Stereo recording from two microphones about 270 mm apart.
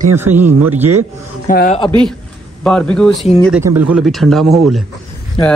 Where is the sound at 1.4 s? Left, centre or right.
Left.